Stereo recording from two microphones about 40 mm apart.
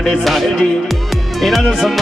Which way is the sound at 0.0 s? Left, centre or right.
Centre.